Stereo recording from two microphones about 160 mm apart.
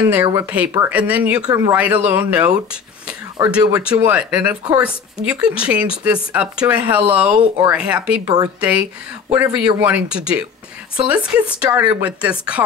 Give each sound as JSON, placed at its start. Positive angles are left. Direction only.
{"t": 0.2, "sound": "speech", "side_deg": -20}